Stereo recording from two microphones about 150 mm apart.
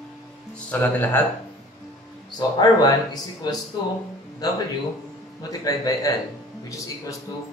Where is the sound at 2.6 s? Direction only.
30° left (ahead or behind).